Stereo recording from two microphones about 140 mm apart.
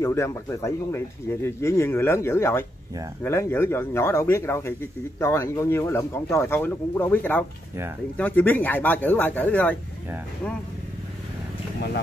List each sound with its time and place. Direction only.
0.0 s speech: 20° left (ahead or behind)